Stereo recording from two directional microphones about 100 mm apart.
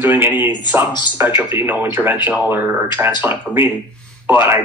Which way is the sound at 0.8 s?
45° left (ahead or behind).